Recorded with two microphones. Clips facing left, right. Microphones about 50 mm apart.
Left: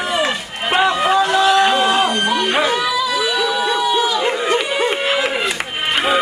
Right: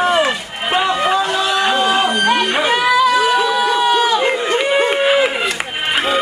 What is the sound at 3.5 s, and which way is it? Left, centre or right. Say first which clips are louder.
Crowd: right 3 dB; right.